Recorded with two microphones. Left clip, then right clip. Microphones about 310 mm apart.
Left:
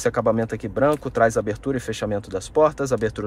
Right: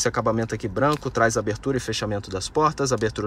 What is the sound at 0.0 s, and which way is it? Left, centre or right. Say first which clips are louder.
A man's voice: left 2 dB; centre.